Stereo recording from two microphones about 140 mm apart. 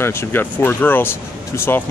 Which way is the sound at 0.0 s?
15° left (ahead or behind).